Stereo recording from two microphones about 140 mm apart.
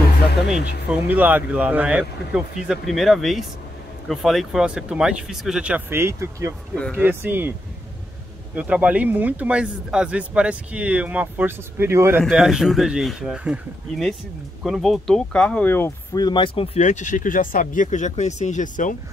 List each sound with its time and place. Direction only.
0.5 s speech: 10° right (ahead or behind)
6.7 s speech: 10° left (ahead or behind)
7.0 s speech: 15° right (ahead or behind)
8.5 s speech: 10° right (ahead or behind)
12.3 s speech: 5° right (ahead or behind)
14.6 s speech: centre (ahead or behind)
16.1 s speech: 30° left (ahead or behind); by 18.9 s 65° left (ahead or behind)